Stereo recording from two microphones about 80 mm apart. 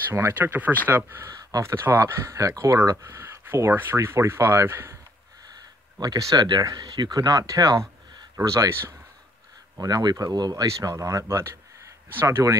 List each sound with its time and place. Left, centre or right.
0.1 s speech: right
1.2 s speech: right
5.9 s speech: right
9.8 s speech: right